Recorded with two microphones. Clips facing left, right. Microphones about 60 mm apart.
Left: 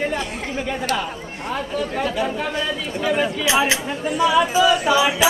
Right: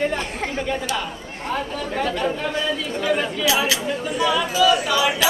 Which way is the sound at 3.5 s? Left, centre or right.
Left.